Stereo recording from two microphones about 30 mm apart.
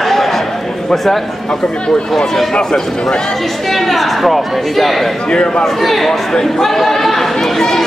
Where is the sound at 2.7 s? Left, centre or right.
Centre.